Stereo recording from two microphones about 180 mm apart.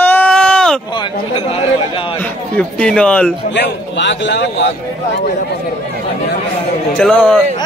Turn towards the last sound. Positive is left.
turn(degrees=5)  # may be behind; listen again after turning